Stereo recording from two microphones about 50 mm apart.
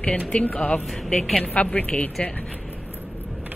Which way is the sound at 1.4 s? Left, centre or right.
Left.